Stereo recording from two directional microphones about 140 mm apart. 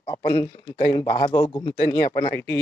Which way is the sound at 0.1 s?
25° left (ahead or behind).